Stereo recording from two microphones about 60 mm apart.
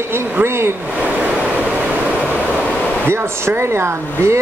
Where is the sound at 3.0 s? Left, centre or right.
Right.